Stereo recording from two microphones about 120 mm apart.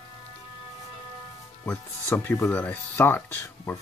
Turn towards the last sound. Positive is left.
turn(degrees=15)  # may be behind; listen again after turning